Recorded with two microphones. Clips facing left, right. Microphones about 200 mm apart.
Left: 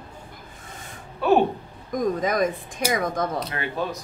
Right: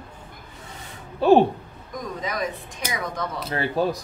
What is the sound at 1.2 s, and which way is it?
Speech, 30° right (ahead or behind).